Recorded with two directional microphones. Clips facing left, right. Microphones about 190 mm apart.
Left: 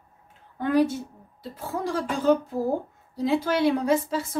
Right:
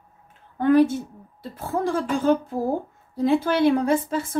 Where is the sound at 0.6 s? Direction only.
55° right (ahead or behind).